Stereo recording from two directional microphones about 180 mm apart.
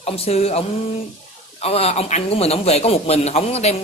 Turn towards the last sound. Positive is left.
turn(degrees=35)  # may be behind; listen again after turning